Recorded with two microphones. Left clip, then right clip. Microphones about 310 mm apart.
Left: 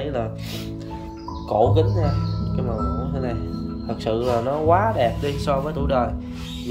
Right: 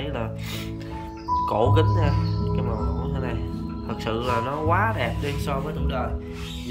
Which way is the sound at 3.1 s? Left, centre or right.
Centre.